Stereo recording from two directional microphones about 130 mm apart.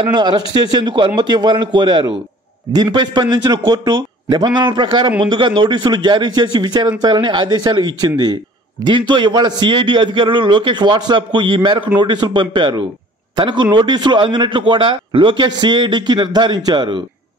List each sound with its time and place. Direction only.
0.0 s a man's voice: 35° right (ahead or behind)